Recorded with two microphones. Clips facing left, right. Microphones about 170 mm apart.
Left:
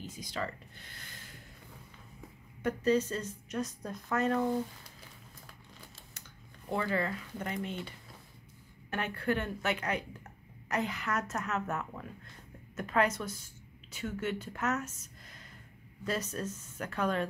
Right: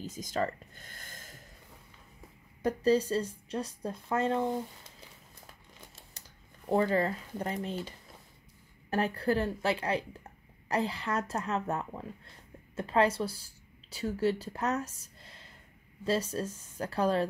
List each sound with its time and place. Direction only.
0.0 s speech: 45° right (ahead or behind)
2.6 s a woman's voice: 35° right (ahead or behind)
6.1 s speech: 35° right (ahead or behind)
8.9 s a woman's voice: 35° right (ahead or behind)
15.0 s a sound: 30° right (ahead or behind)
16.0 s a woman's voice: 30° right (ahead or behind)